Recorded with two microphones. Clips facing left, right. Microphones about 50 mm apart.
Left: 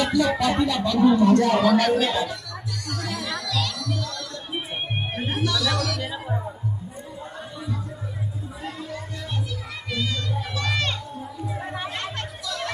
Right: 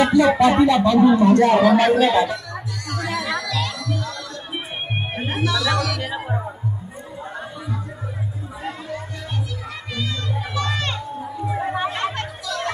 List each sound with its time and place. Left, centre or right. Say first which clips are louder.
0.0 s speech: right 7 dB; right
3.3 s music: right 4 dB; right
3.8 s music: right 3 dB; centre
5.1 s music: right 1 dB; right
5.4 s speech: right 4 dB; centre
6.0 s music: right 3 dB; right
9.9 s a sound: even; right
10.6 s music: right 1 dB; right
11.4 s chatter: right 9 dB; right